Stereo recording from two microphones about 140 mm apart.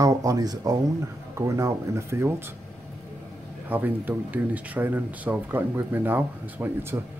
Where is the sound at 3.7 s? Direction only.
15° right (ahead or behind).